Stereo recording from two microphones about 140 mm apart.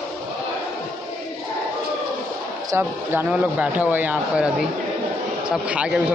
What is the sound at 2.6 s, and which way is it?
Speech, 15° right (ahead or behind).